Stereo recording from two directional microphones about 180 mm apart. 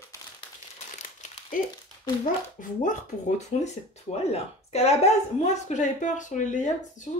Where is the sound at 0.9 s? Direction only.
45° left (ahead or behind).